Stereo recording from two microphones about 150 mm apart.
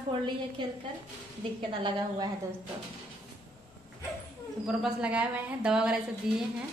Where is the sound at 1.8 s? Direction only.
30° right (ahead or behind).